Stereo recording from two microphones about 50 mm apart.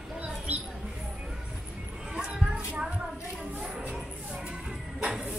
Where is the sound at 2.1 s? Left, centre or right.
Right.